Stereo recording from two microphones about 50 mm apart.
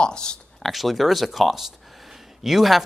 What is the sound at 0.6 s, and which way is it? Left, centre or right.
Speech, centre.